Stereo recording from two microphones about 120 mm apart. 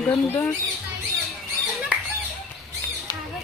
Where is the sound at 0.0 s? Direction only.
20° left (ahead or behind).